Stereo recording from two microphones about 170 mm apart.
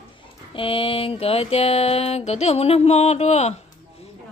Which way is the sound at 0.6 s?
30° left (ahead or behind).